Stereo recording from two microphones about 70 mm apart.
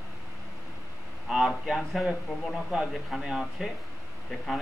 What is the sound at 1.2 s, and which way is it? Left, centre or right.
Speech, centre.